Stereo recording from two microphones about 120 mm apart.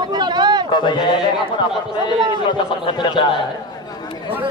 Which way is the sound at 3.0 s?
40° left (ahead or behind).